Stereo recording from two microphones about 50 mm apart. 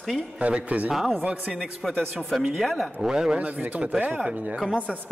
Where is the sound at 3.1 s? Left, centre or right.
Centre.